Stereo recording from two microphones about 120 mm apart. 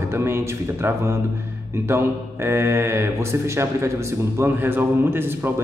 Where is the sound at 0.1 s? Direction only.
20° right (ahead or behind).